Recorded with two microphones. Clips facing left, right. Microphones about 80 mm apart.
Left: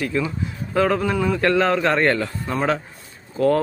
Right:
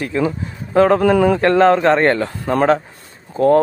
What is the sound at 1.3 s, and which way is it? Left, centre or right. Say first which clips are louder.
Speech: right 6 dB; right.